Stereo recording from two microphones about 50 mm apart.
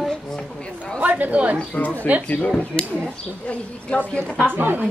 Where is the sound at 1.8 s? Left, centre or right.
Left.